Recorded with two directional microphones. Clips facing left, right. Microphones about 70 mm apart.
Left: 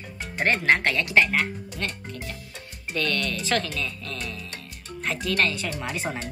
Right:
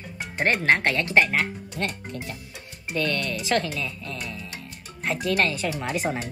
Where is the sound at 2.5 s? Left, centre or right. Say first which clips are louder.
Right 2 dB; centre.